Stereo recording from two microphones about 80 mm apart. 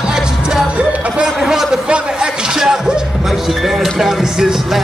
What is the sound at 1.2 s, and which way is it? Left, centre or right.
Speech, centre.